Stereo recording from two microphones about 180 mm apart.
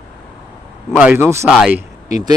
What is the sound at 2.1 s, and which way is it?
Speech, 20° right (ahead or behind).